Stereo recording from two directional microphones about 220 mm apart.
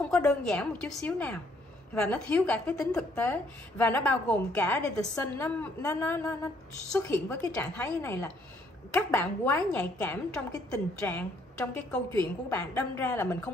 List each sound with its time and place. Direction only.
0.0 s a woman's voice: 5° left (ahead or behind)